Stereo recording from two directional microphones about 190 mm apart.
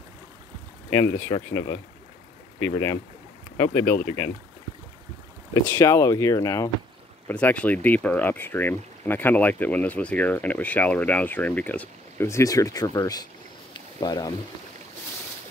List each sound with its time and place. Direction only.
1.2 s speech: 15° left (ahead or behind)
5.5 s speech: 15° left (ahead or behind)
13.7 s a sound: 20° left (ahead or behind)